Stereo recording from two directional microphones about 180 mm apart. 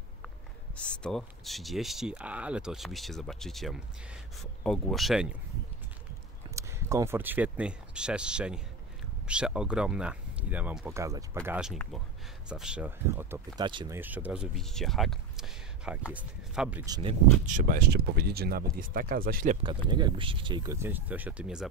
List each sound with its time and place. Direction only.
0.7 s speech: 5° left (ahead or behind)
6.5 s speech: 15° right (ahead or behind)
10.9 s speech: 15° right (ahead or behind)
11.4 s speech: 5° right (ahead or behind)
13.6 s speech: 25° right (ahead or behind)
13.9 s speech: 10° right (ahead or behind)
16.8 s speech: 20° right (ahead or behind)
17.5 s speech: 50° right (ahead or behind)
19.6 s speech: 25° right (ahead or behind); by 21.6 s 5° right (ahead or behind)